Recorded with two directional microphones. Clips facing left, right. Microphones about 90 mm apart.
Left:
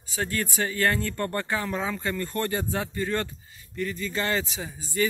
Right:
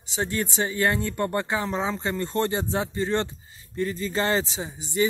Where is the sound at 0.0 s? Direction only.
20° right (ahead or behind).